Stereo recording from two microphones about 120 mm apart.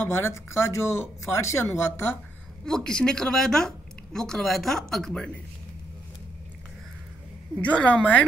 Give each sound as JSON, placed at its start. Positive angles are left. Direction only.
{"t": 0.0, "sound": "speech", "side_deg": 20}
{"t": 2.6, "sound": "a woman's voice", "side_deg": 5}
{"t": 7.6, "sound": "a woman's voice", "side_deg": 10}